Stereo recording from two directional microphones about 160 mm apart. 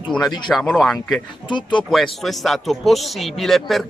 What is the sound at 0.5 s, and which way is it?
Speech, centre (ahead or behind).